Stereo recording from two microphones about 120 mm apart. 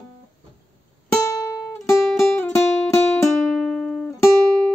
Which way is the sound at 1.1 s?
25° left (ahead or behind).